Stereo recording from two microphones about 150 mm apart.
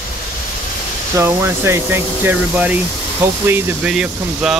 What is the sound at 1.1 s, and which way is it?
Speech, 15° right (ahead or behind).